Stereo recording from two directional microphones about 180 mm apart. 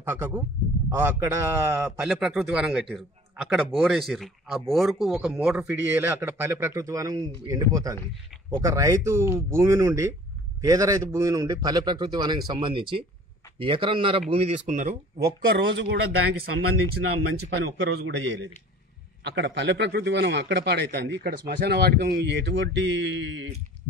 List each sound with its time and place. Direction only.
0.1 s a man's voice: 10° right (ahead or behind); by 14.2 s 30° right (ahead or behind)
14.3 s speech: 40° right (ahead or behind)
15.4 s a man's voice: 80° right
16.9 s a man's voice: 70° right (ahead or behind); by 23.5 s 90° right